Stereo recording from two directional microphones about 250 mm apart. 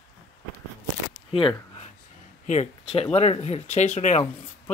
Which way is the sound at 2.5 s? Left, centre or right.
Left.